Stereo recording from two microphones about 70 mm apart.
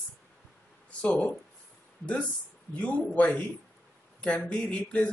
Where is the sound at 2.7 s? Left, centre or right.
Left.